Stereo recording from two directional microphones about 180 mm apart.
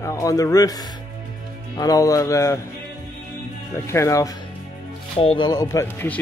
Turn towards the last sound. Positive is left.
turn(degrees=10)  # may be behind; listen again after turning